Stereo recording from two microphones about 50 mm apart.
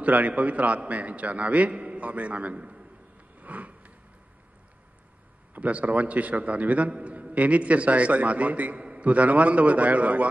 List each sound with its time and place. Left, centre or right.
0.0 s a man's voice: right
3.3 s a sound: right
5.5 s a man's voice: right